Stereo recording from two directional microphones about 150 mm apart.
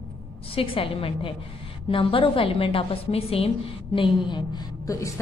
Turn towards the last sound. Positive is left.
turn(degrees=20)  # may be behind; listen again after turning